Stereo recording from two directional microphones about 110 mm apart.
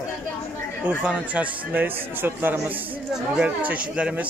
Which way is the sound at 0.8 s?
15° right (ahead or behind).